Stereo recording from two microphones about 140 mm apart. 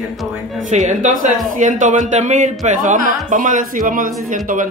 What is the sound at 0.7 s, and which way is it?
A man's voice, 60° right (ahead or behind).